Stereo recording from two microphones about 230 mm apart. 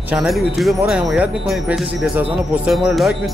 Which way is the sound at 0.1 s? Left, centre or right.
Centre.